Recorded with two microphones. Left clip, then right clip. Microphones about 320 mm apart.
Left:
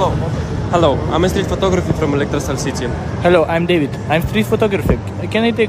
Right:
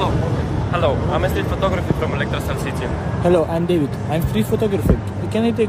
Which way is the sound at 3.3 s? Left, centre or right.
Centre.